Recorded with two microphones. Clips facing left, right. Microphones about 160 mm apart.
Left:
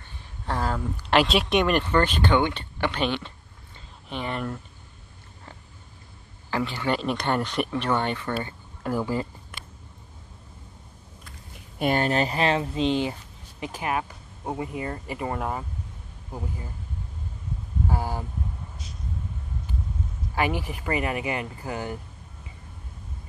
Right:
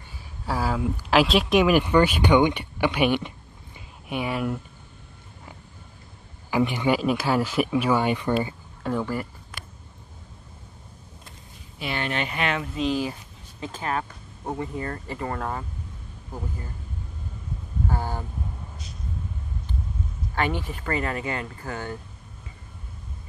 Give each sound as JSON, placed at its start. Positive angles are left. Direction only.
{"t": 0.5, "sound": "speech", "side_deg": -5}
{"t": 6.5, "sound": "speech", "side_deg": -15}
{"t": 7.0, "sound": "speech", "side_deg": -5}
{"t": 9.0, "sound": "speech", "side_deg": 20}
{"t": 11.8, "sound": "speech", "side_deg": 40}
{"t": 13.6, "sound": "speech", "side_deg": 15}
{"t": 17.8, "sound": "a sound", "side_deg": 10}
{"t": 20.3, "sound": "speech", "side_deg": 10}